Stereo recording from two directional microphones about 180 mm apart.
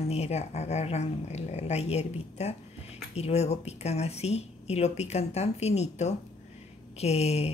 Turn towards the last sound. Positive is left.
turn(degrees=35)  # may be behind; listen again after turning